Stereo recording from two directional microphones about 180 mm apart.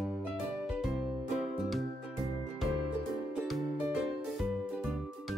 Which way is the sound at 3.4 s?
Centre (ahead or behind).